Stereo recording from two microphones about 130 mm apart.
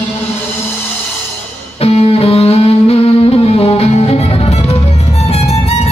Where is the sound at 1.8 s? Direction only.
50° left (ahead or behind).